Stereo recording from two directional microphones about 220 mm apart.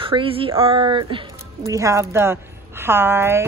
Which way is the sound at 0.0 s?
25° right (ahead or behind).